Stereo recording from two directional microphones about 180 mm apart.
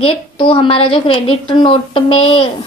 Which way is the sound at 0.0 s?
30° left (ahead or behind).